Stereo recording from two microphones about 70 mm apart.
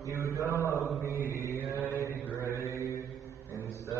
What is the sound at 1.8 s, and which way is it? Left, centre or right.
Mantra, left.